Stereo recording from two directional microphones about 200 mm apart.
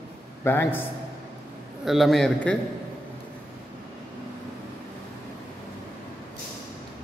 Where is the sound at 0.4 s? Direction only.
10° left (ahead or behind).